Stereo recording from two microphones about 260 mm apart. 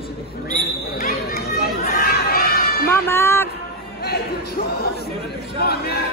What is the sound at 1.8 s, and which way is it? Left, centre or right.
Crowd, left.